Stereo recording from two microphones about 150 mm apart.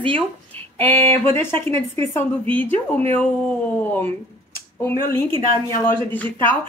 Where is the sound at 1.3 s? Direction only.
15° left (ahead or behind).